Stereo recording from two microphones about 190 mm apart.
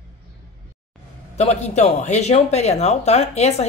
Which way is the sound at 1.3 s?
35° left (ahead or behind).